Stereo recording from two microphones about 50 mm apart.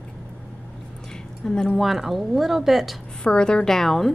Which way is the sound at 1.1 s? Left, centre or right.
Centre.